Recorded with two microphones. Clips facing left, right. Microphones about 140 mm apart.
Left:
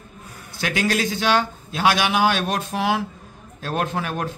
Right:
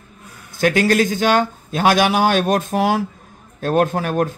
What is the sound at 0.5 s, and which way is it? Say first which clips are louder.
A man's voice: right 7 dB; 45° right (ahead or behind).